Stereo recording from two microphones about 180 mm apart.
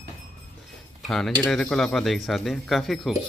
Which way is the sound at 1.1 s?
Centre (ahead or behind).